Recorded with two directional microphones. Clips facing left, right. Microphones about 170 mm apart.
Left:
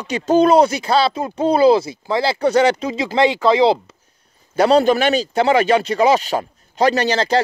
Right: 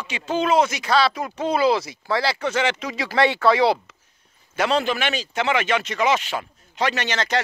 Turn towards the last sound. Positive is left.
turn(degrees=35)  # may be behind; listen again after turning